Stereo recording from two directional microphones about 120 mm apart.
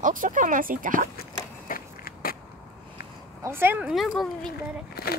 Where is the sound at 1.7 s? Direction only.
90° left.